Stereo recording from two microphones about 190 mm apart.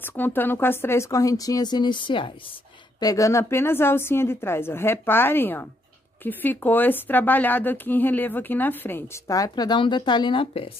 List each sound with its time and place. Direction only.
0.0 s speech: 10° left (ahead or behind); by 10.7 s 30° left (ahead or behind)